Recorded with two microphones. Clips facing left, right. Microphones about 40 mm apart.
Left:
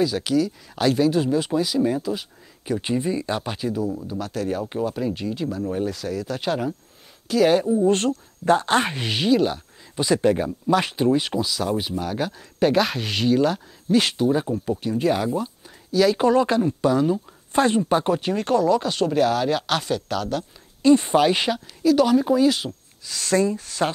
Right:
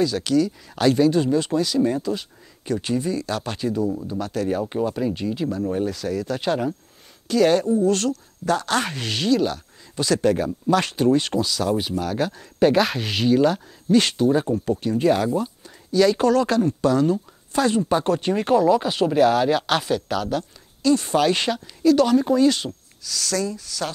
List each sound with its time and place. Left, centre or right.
0.0 s speech: centre
2.8 s speech: centre
3.4 s speech: centre
7.8 s speech: left; by 16.3 s centre
16.3 s speech: centre
17.5 s speech: left
17.8 s speech: centre
18.2 s speech: centre
20.8 s speech: left
21.1 s speech: centre
22.7 s speech: left